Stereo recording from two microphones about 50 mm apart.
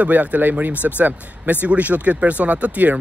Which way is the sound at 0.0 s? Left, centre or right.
Right.